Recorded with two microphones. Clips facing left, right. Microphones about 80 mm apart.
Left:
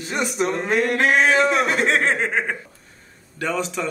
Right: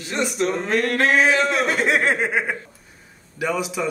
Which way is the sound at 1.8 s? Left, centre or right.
Centre.